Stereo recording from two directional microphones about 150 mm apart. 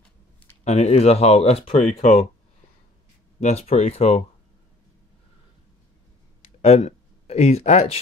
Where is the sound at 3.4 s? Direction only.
45° left (ahead or behind).